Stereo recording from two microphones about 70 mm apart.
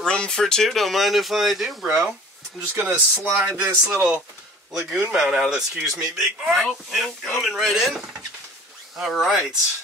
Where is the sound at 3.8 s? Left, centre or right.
Centre.